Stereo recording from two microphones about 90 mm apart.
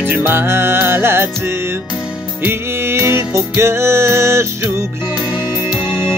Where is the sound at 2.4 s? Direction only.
25° right (ahead or behind).